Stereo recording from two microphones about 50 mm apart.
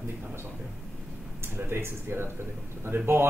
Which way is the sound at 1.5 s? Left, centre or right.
Right.